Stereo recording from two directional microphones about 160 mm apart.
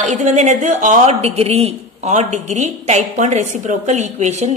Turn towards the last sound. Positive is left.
turn(degrees=-45)  # may be behind; listen again after turning